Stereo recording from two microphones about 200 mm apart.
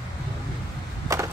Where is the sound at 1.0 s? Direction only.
15° right (ahead or behind).